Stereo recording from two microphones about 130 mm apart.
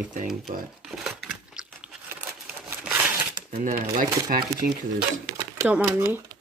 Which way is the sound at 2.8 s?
10° right (ahead or behind).